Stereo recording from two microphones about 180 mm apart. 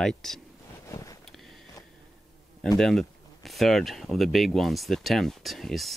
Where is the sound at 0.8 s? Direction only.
20° left (ahead or behind).